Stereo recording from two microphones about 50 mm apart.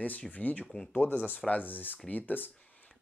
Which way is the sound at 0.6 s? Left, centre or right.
Centre.